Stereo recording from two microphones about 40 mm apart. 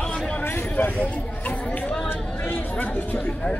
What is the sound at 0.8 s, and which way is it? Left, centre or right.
Speech, left.